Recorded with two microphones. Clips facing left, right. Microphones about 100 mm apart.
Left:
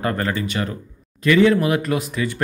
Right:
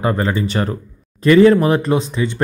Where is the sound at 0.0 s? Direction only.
20° right (ahead or behind).